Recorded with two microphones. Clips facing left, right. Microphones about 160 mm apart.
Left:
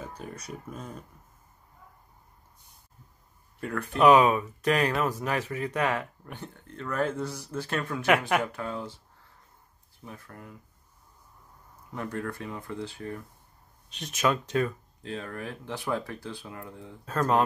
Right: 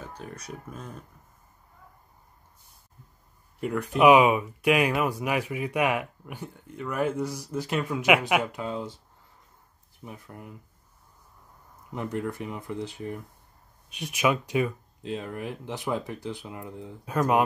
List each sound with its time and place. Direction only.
0.0 s speech: centre (ahead or behind)
3.6 s speech: 15° right (ahead or behind)
11.9 s speech: 20° right (ahead or behind)